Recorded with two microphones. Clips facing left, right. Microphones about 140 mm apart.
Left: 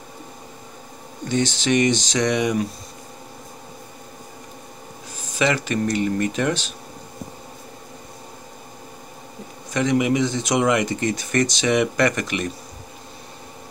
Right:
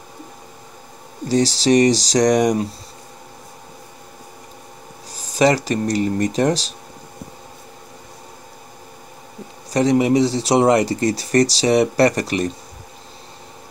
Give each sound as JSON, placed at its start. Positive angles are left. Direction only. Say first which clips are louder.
{"t": 1.2, "sound": "speech", "louder": "right 5 dB", "side_deg": -35}
{"t": 5.1, "sound": "speech", "louder": "right 6 dB", "side_deg": -35}
{"t": 9.7, "sound": "speech", "louder": "right 4 dB", "side_deg": -35}